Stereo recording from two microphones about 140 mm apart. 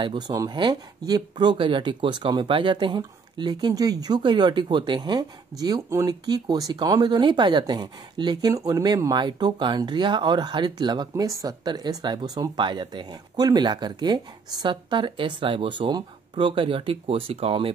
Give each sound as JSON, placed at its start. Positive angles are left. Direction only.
{"t": 0.0, "sound": "speech", "side_deg": -35}